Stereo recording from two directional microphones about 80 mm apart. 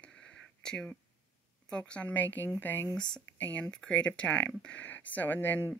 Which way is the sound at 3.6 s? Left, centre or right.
Centre.